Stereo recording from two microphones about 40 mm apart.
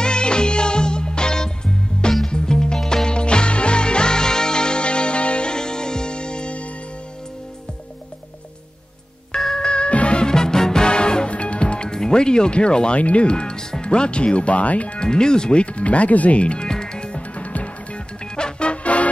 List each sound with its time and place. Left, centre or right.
0.0 s music: left
9.6 s music: left
10.2 s music: centre
11.9 s speech: centre; by 15.0 s left
15.0 s speech: centre
16.6 s music: centre
17.4 s music: left
18.3 s music: left